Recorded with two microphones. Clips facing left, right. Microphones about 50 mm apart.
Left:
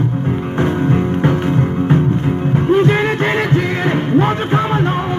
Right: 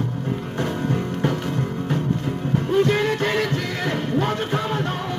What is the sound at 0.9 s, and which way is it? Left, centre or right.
Music, left.